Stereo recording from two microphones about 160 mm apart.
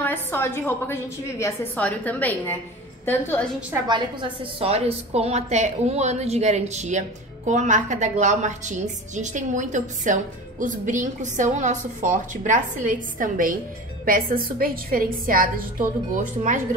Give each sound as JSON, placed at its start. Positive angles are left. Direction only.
{"t": 0.0, "sound": "a woman's voice", "side_deg": 15}
{"t": 3.8, "sound": "a woman's voice", "side_deg": -30}